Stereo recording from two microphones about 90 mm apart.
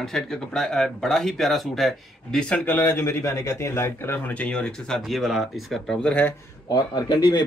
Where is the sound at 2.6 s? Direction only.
25° left (ahead or behind).